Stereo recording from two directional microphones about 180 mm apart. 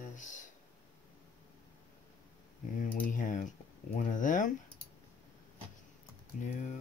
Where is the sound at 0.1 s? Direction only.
45° left (ahead or behind).